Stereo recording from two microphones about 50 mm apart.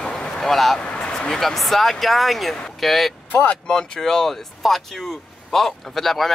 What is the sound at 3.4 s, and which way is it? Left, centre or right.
Speech, left.